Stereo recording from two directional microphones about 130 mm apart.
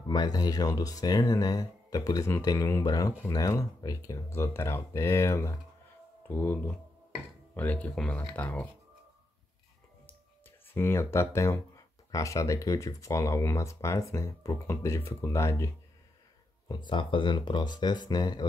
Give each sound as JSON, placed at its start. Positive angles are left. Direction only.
{"t": 0.0, "sound": "speech", "side_deg": 30}
{"t": 10.7, "sound": "speech", "side_deg": 20}
{"t": 16.6, "sound": "speech", "side_deg": 35}